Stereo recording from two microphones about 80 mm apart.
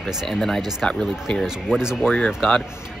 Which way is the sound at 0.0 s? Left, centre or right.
Centre.